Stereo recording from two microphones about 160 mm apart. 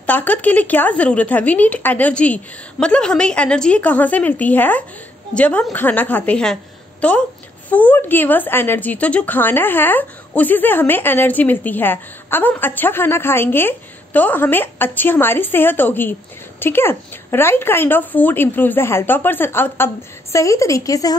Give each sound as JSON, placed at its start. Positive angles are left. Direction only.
{"t": 0.0, "sound": "a woman's voice", "side_deg": 10}